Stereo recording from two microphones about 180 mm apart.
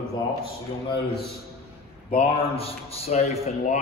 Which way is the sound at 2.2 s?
35° left (ahead or behind).